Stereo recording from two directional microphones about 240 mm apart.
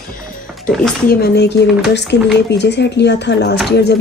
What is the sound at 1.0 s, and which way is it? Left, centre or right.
Speech, left.